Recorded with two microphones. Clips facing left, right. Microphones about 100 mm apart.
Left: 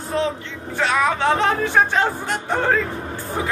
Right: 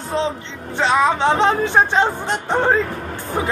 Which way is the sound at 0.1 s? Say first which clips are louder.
Right 1 dB; 25° right (ahead or behind).